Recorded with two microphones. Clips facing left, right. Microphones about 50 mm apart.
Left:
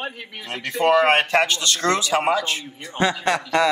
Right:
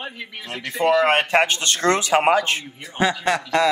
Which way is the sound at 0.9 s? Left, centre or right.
Left.